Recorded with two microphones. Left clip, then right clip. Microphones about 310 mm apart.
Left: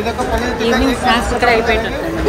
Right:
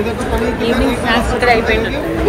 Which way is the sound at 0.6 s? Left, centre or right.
Left.